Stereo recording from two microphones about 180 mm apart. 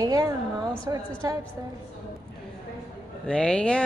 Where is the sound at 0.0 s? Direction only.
20° right (ahead or behind).